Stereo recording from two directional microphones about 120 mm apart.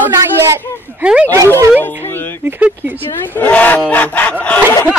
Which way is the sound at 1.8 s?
20° left (ahead or behind).